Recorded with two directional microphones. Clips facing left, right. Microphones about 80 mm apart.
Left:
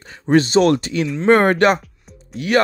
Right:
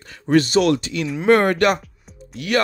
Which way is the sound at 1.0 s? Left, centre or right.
Centre.